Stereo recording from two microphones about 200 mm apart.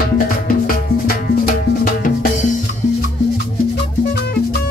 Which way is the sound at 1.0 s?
45° left (ahead or behind).